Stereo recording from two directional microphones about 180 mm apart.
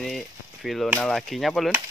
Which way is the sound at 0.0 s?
Centre (ahead or behind).